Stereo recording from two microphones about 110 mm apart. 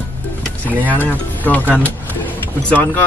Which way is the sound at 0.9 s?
15° left (ahead or behind).